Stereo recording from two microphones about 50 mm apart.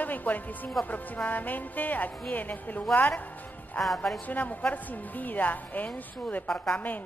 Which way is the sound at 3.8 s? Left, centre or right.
Centre.